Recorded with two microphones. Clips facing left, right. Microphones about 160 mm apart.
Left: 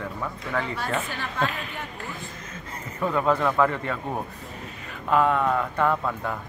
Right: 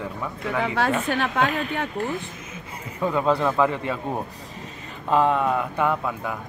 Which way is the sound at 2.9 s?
15° right (ahead or behind).